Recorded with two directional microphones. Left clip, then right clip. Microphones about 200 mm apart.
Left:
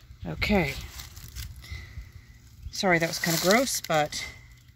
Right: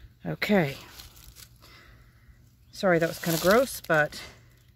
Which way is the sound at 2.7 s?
35° right (ahead or behind).